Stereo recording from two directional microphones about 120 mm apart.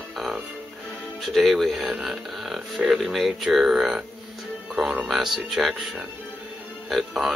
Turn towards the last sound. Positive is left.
turn(degrees=0)  # may be behind; listen again after turning